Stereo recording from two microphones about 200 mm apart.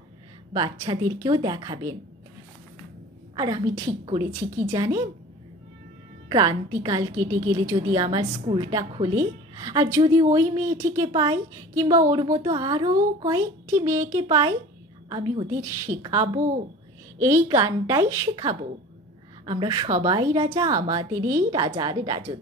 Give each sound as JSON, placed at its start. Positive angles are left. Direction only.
{"t": 0.5, "sound": "a woman's voice", "side_deg": -20}
{"t": 3.3, "sound": "a woman's voice", "side_deg": -20}
{"t": 6.2, "sound": "a woman's voice", "side_deg": -20}
{"t": 19.4, "sound": "a woman's voice", "side_deg": -20}